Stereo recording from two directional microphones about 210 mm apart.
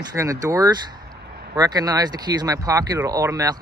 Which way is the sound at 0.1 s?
15° right (ahead or behind).